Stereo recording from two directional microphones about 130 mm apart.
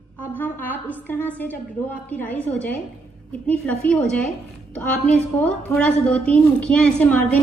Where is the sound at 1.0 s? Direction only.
15° left (ahead or behind).